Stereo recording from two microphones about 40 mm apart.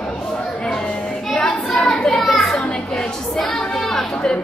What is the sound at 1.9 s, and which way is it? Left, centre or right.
Children playing, centre.